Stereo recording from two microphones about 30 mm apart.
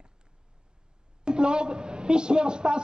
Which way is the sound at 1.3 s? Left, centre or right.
Right.